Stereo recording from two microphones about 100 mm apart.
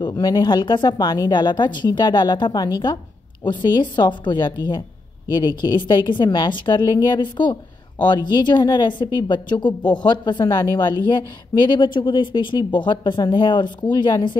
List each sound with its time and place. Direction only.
0.0 s a woman's voice: 45° left (ahead or behind)